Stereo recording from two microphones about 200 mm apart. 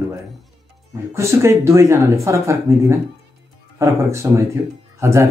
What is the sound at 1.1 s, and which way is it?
Speech, 15° right (ahead or behind).